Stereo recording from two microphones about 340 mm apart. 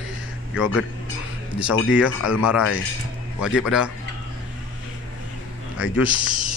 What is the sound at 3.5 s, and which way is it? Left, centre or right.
Speech, centre.